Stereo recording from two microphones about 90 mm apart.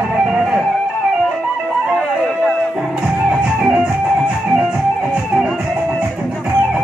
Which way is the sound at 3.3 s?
10° right (ahead or behind).